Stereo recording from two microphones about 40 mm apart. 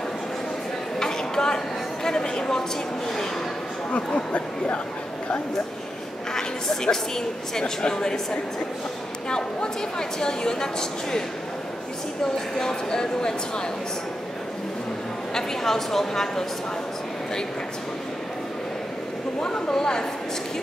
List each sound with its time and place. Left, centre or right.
0.9 s a sound: centre
3.9 s speech: left
6.3 s a woman's voice: centre
9.3 s a woman's voice: left
12.5 s a woman's voice: centre
15.3 s speech: centre
19.4 s a woman's voice: centre